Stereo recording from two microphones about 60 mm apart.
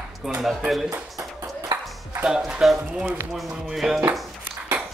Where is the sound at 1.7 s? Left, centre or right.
Right.